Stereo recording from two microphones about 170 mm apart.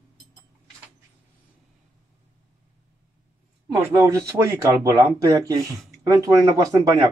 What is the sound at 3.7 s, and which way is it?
Speech, 15° right (ahead or behind).